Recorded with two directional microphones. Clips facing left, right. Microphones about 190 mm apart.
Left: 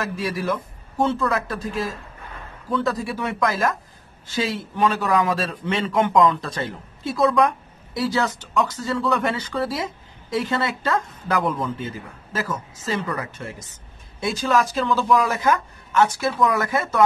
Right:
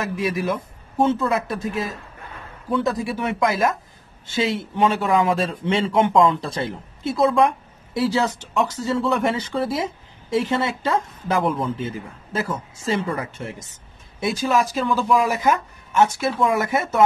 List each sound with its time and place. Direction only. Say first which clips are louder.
0.1 s speech: right 2 dB; 20° right (ahead or behind)
14.6 s speech: even; 15° right (ahead or behind)